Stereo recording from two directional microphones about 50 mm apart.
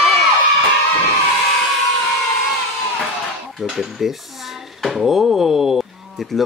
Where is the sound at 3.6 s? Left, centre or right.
Centre.